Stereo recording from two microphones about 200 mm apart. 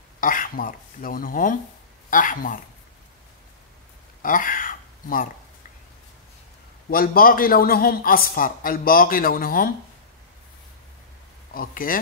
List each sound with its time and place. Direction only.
0.2 s speech: 45° left (ahead or behind)
4.2 s a sound: 45° left (ahead or behind)
6.9 s speech: 45° left (ahead or behind)
11.5 s speech: 45° left (ahead or behind)